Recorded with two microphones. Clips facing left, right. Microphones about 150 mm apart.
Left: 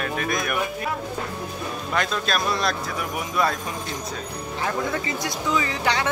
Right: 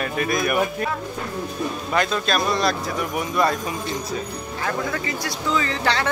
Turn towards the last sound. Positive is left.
turn(degrees=15)  # may be behind; listen again after turning